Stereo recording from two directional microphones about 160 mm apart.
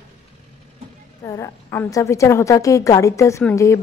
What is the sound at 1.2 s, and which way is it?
A woman's voice, 20° left (ahead or behind).